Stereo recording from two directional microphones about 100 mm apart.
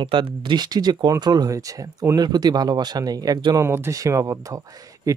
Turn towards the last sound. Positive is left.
turn(degrees=-30)  # may be behind; listen again after turning